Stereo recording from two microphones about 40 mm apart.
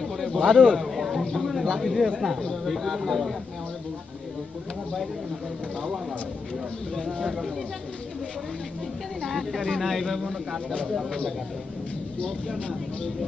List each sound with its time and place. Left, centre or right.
0.0 s a man's voice: centre
0.8 s a sound: centre
1.3 s speech: centre
7.1 s speech: centre
9.3 s speech: centre
12.5 s speech: left